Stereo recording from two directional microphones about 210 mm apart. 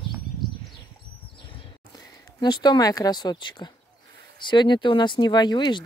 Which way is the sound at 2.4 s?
20° left (ahead or behind).